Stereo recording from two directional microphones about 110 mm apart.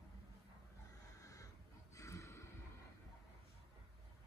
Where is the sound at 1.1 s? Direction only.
30° left (ahead or behind).